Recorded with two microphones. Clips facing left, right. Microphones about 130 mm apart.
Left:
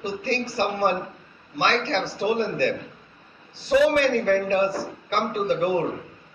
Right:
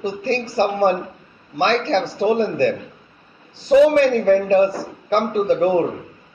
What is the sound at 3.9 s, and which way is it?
A man's voice, 35° right (ahead or behind).